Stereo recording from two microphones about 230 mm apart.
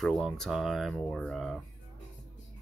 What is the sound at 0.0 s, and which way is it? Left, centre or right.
Speech, centre.